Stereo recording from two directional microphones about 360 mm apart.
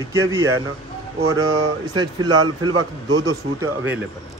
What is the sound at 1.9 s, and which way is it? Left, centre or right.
Speech, centre.